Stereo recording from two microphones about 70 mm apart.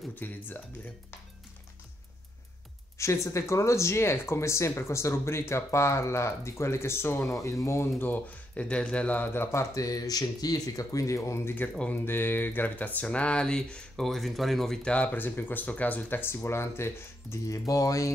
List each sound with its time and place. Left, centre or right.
0.1 s speech: left
3.0 s speech: left
8.0 s speech: left
11.9 s speech: left; by 14.8 s centre
14.8 s speech: centre
15.0 s speech: left
17.6 s speech: left